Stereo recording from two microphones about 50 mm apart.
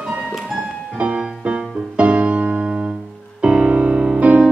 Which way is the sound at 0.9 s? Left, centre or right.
Right.